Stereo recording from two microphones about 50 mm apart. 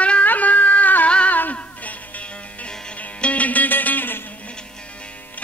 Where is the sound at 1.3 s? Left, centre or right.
Left.